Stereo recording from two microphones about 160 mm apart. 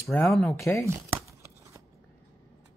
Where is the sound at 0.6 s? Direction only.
15° left (ahead or behind).